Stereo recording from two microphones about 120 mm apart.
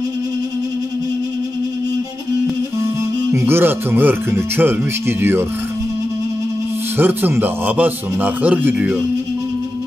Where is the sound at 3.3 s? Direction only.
20° right (ahead or behind).